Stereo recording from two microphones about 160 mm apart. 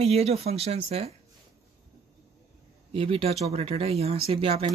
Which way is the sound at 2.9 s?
35° right (ahead or behind).